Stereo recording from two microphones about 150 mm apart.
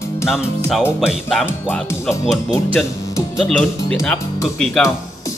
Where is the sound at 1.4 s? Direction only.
15° left (ahead or behind).